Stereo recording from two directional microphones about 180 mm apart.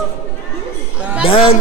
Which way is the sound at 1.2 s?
30° left (ahead or behind).